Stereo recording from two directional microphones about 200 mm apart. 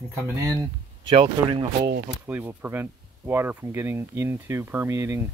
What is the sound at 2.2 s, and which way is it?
Speech, 10° right (ahead or behind).